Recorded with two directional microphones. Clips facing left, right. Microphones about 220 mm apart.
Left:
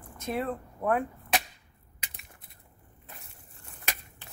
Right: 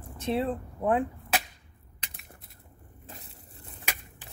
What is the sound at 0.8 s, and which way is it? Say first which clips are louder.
Speech: right 2 dB; 20° right (ahead or behind).